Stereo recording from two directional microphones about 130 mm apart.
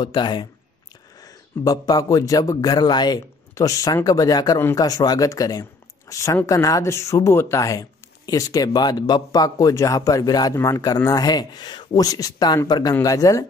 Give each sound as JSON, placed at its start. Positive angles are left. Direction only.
{"t": 0.0, "sound": "speech", "side_deg": 35}